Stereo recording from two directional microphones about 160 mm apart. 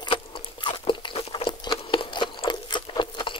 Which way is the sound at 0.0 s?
30° left (ahead or behind).